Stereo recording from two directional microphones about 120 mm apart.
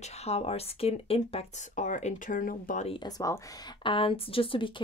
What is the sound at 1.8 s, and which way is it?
Speech, 85° left.